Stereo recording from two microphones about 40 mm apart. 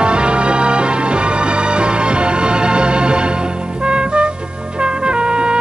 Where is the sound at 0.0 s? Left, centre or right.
Right.